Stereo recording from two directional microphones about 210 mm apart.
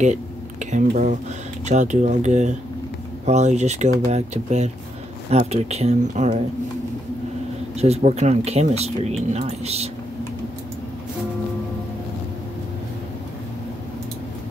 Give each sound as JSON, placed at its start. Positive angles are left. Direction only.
{"t": 0.0, "sound": "speech", "side_deg": -35}
{"t": 7.8, "sound": "speech", "side_deg": -30}